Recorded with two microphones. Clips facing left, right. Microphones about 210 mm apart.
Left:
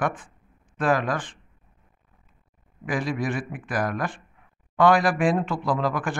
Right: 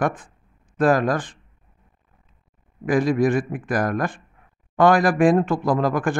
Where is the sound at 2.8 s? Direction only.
45° right (ahead or behind).